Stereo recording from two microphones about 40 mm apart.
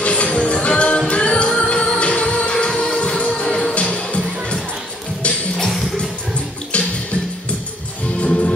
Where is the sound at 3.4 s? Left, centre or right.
Centre.